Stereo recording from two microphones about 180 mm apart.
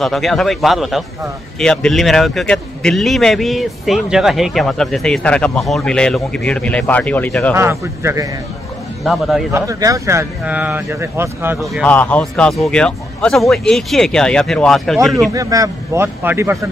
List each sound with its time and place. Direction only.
0.0 s a man's voice: centre (ahead or behind)
7.5 s speech: 15° right (ahead or behind)
9.0 s a man's voice: centre (ahead or behind)
9.5 s speech: 20° right (ahead or behind)
11.6 s a man's voice: 5° left (ahead or behind)
15.3 s speech: 20° right (ahead or behind)